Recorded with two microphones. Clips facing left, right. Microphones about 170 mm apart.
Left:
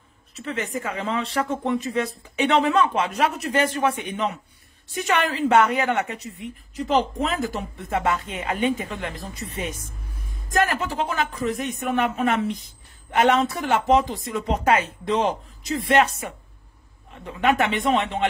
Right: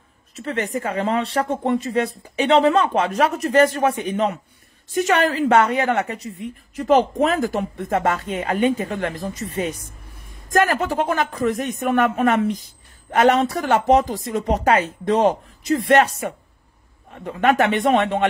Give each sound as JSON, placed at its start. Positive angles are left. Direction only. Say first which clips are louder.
{"t": 0.4, "sound": "speech", "louder": "right 4 dB", "side_deg": -35}
{"t": 6.9, "sound": "speech", "louder": "right 6 dB", "side_deg": -50}
{"t": 10.5, "sound": "speech", "louder": "right 4 dB", "side_deg": -45}
{"t": 15.6, "sound": "speech", "louder": "right 4 dB", "side_deg": -50}